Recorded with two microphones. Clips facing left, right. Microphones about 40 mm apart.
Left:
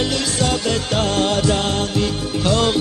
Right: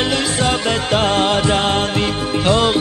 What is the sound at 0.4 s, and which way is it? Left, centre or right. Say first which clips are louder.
Music: right 2 dB; right.